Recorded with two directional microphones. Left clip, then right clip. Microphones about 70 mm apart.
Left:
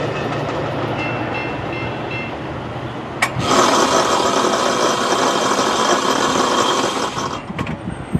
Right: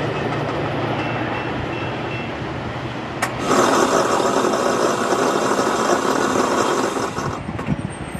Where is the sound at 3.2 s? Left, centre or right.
Left.